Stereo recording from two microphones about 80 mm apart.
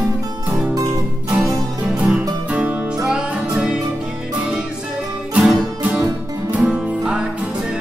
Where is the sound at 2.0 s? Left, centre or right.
Centre.